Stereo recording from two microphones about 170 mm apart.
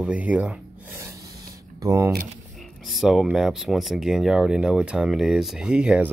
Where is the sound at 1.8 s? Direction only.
15° right (ahead or behind).